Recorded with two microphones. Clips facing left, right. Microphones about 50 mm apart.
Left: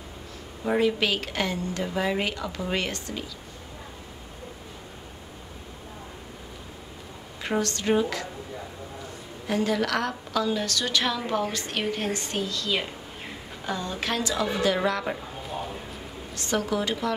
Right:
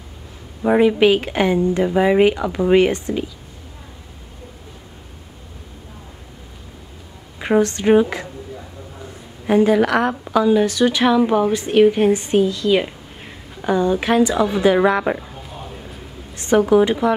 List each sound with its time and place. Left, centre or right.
0.7 s a woman's voice: right
7.3 s a woman's voice: right
9.5 s a woman's voice: right
16.3 s a woman's voice: right